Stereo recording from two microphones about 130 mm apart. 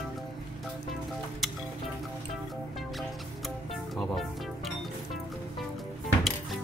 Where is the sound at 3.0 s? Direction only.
Centre (ahead or behind).